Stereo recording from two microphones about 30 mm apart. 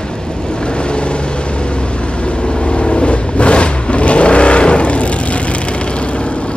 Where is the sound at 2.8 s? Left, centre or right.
Left.